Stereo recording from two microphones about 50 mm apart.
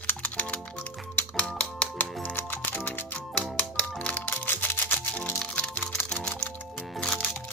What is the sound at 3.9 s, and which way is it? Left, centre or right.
Music, left.